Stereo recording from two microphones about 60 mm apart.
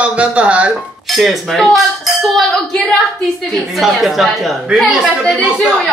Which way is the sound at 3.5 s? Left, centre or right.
Centre.